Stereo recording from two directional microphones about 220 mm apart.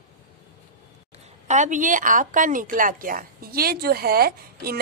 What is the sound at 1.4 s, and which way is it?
A woman's voice, 35° right (ahead or behind).